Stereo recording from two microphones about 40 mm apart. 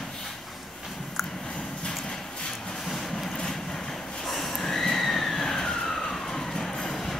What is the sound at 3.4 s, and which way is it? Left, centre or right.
Neigh, centre.